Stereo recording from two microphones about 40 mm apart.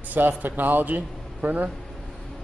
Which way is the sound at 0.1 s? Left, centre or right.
Right.